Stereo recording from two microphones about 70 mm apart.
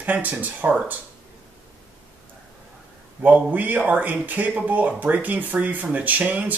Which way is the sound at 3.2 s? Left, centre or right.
Right.